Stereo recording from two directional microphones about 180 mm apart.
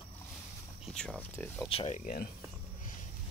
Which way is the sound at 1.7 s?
35° left (ahead or behind).